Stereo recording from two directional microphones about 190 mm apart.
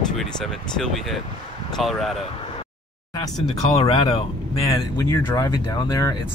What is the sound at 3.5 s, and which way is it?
Speech, 25° left (ahead or behind).